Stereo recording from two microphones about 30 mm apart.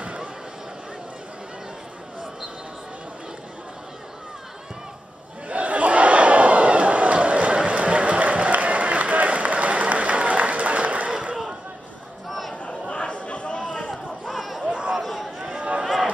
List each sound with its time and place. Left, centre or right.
5.5 s crowd: right
12.3 s chatter: centre
12.8 s chatter: left
13.8 s chatter: centre
14.7 s chatter: right
15.0 s a sound: centre